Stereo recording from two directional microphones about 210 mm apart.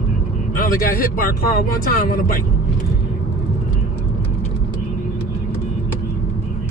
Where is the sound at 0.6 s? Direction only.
45° left (ahead or behind).